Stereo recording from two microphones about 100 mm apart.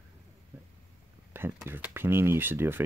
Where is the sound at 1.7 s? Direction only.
20° right (ahead or behind).